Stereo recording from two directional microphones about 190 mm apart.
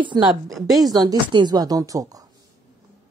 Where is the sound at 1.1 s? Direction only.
20° right (ahead or behind).